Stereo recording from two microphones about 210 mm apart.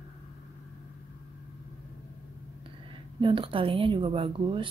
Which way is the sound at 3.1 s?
25° right (ahead or behind).